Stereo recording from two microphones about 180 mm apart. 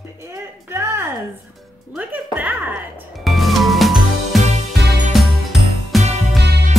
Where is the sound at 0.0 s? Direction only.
15° right (ahead or behind).